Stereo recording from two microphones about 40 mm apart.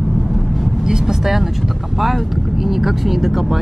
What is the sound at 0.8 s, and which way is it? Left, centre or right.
Vehicle, centre.